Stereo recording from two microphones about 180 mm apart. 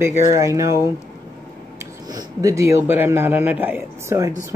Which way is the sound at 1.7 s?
20° right (ahead or behind).